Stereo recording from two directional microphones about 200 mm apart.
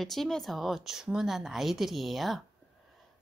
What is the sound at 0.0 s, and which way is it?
Speech, centre (ahead or behind).